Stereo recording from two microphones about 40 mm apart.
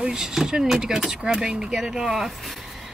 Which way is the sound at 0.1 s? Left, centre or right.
Centre.